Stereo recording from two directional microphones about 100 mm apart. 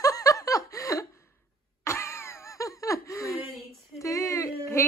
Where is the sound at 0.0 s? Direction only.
35° left (ahead or behind).